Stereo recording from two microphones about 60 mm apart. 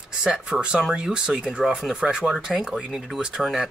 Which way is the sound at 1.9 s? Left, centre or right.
Centre.